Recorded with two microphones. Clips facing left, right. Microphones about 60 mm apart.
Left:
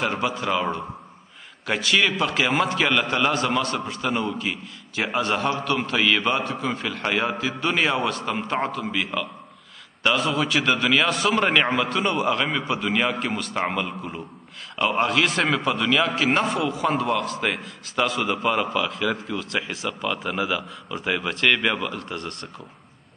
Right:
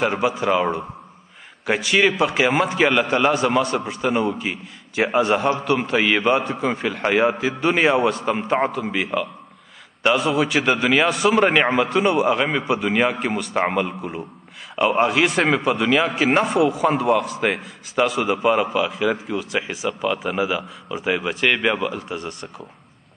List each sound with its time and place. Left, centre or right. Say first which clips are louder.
0.0 s a man's voice: right 4 dB; centre